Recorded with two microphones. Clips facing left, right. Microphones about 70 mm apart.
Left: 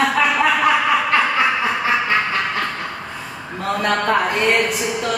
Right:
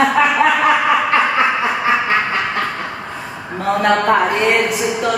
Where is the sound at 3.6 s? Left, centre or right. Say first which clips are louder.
Right 5 dB; centre.